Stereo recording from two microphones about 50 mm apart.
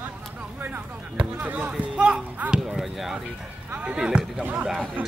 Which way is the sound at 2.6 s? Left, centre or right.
Centre.